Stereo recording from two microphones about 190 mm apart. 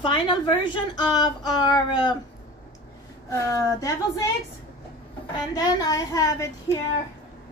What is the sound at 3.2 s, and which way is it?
Speech, 15° left (ahead or behind).